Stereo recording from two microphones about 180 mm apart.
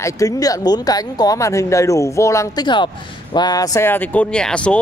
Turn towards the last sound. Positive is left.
turn(degrees=5)  # may be behind; listen again after turning